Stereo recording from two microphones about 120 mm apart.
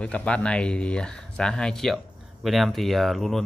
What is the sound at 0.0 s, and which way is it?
Speech, 10° left (ahead or behind).